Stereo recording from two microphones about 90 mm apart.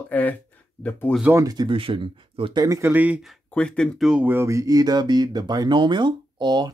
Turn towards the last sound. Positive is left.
turn(degrees=-55)  # may be behind; listen again after turning